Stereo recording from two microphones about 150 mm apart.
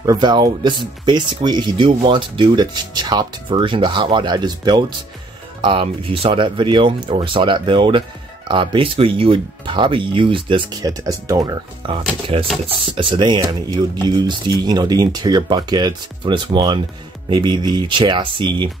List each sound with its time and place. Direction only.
0.0 s speech: 25° right (ahead or behind)
11.8 s speech: 35° right (ahead or behind)